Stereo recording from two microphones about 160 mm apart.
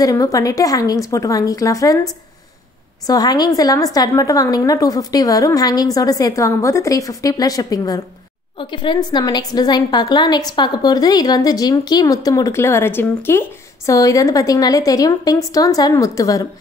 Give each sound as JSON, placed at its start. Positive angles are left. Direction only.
{"t": 0.0, "sound": "a woman's voice", "side_deg": 20}